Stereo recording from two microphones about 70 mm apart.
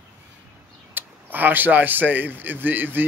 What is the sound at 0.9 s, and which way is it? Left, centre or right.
Speech, right.